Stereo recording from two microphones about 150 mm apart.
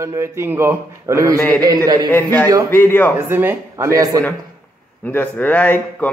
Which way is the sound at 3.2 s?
15° right (ahead or behind).